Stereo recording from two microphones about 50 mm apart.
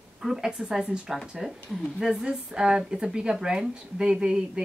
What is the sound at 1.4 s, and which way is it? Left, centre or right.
Speech, centre.